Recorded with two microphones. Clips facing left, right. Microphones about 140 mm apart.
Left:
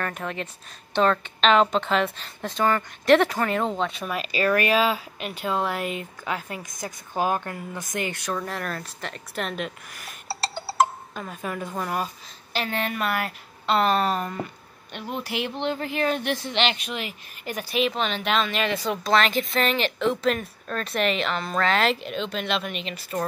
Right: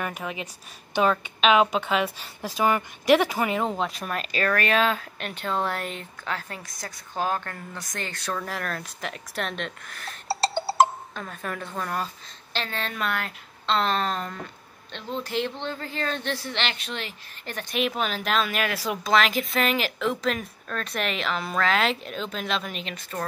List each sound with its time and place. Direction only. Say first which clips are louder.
0.0 s a woman's voice: left 1 dB; 5° right (ahead or behind); by 8.2 s 15° left (ahead or behind)
8.3 s a woman's voice: left 1 dB; centre (ahead or behind)
17.7 s a woman's voice: left 2 dB; 5° right (ahead or behind)